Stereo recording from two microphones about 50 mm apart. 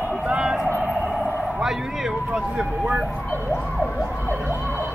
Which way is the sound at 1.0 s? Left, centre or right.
Centre.